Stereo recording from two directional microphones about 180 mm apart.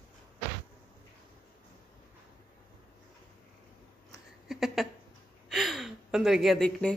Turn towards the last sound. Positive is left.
turn(degrees=5)  # may be behind; listen again after turning